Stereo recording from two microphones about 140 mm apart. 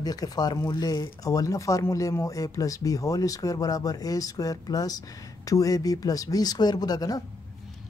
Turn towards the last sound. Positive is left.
turn(degrees=25)  # may be behind; listen again after turning